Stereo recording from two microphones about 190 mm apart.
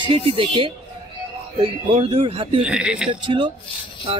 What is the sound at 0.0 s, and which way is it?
Speech, 30° right (ahead or behind).